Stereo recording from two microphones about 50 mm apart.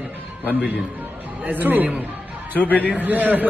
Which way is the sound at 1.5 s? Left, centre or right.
Right.